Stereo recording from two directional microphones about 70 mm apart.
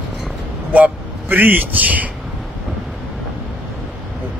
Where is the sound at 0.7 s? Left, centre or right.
Right.